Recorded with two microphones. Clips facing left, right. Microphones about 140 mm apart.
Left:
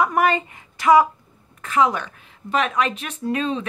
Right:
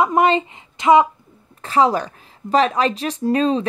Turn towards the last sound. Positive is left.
turn(degrees=-35)  # may be behind; listen again after turning